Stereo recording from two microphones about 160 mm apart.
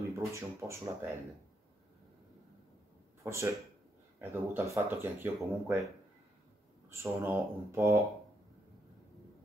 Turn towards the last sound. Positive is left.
turn(degrees=-20)  # may be behind; listen again after turning